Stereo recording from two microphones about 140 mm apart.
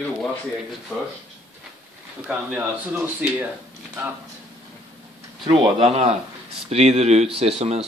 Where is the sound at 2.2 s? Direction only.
10° right (ahead or behind).